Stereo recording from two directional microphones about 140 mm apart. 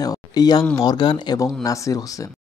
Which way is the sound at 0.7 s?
30° left (ahead or behind).